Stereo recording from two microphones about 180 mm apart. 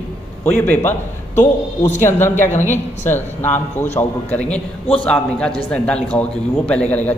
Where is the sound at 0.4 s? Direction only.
10° left (ahead or behind).